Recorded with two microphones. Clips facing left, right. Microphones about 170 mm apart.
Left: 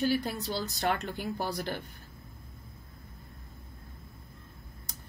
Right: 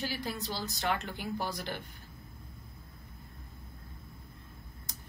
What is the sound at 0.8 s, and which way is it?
Speech, 40° left (ahead or behind).